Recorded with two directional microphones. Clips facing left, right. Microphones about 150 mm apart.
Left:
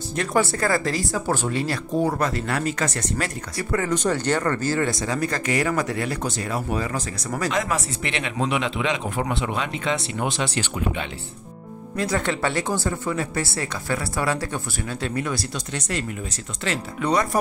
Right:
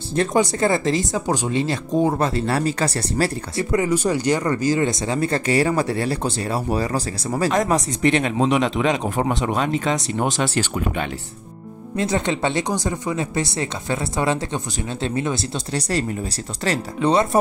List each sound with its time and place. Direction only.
0.1 s speech: 30° right (ahead or behind)
3.7 s speech: 15° right (ahead or behind); by 11.1 s 50° right (ahead or behind)
12.0 s speech: 20° right (ahead or behind)
15.7 s speech: 35° right (ahead or behind)